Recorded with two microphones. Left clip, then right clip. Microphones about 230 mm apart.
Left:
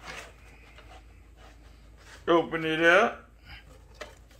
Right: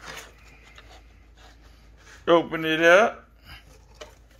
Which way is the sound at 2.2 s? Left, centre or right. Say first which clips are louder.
Right 4 dB; right.